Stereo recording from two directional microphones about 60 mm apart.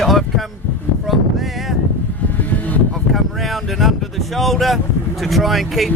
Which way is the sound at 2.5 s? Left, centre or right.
Left.